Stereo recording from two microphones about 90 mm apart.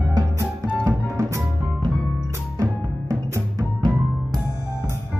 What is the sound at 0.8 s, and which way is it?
Music, 40° right (ahead or behind).